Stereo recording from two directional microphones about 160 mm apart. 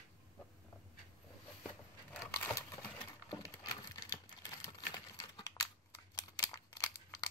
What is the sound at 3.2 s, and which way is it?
Crumpling, 25° left (ahead or behind).